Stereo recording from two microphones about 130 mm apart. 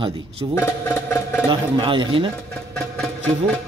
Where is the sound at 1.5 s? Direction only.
40° right (ahead or behind).